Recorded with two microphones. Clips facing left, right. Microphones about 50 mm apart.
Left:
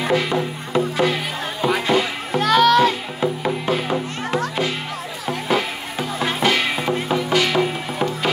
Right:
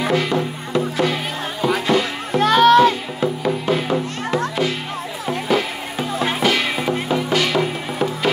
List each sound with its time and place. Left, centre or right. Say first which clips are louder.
0.1 s music: right 1 dB; centre
1.1 s children playing: even; centre
2.4 s music: right 3 dB; right
3.2 s music: right 1 dB; centre
5.5 s music: right 1 dB; centre